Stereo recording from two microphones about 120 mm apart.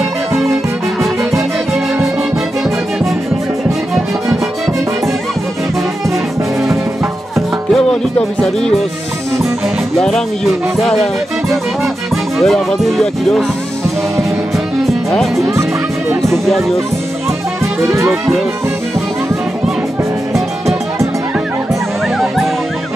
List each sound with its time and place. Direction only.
1.3 s music: centre (ahead or behind)
7.3 s music: 5° left (ahead or behind)
9.9 s music: 5° left (ahead or behind)
14.9 s music: centre (ahead or behind)
16.2 s speech: centre (ahead or behind)
17.8 s music: 25° right (ahead or behind)